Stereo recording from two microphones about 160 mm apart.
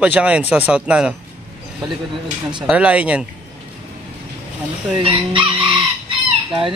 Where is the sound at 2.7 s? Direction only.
5° right (ahead or behind).